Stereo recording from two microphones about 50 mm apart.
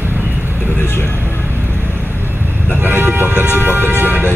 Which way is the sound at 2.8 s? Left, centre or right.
Right.